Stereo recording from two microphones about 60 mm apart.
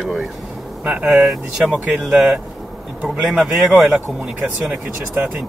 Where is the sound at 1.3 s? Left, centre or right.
Centre.